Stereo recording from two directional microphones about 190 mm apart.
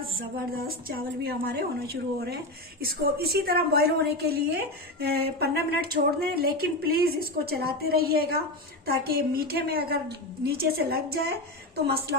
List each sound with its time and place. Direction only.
0.6 s a woman's voice: 50° right (ahead or behind)